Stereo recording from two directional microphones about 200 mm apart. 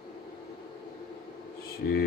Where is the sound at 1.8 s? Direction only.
50° left (ahead or behind).